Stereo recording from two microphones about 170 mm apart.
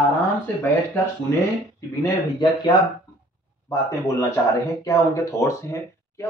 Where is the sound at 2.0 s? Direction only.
25° left (ahead or behind).